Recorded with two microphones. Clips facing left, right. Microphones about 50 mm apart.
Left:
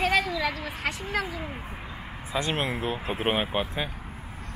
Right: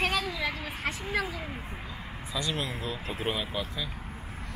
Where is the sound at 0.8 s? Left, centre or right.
Left.